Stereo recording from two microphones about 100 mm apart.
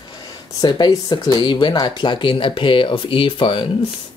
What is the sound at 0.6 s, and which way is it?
Speech, 45° left (ahead or behind).